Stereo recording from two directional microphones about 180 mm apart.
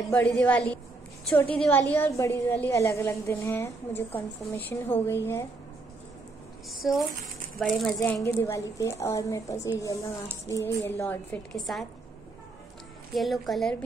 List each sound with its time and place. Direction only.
0.1 s a woman's voice: 5° left (ahead or behind)
6.7 s a woman's voice: centre (ahead or behind)
13.1 s a woman's voice: centre (ahead or behind)